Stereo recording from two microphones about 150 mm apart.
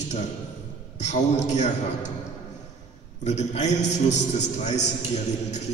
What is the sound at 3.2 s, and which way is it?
A man's voice, 50° left (ahead or behind).